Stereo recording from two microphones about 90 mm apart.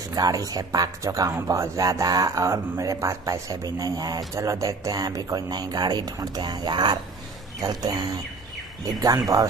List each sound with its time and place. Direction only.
0.1 s speech: 45° right (ahead or behind)
4.4 s speech: 35° right (ahead or behind)